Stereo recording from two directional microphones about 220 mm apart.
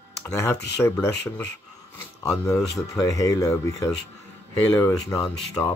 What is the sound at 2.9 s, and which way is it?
Speech, 15° left (ahead or behind).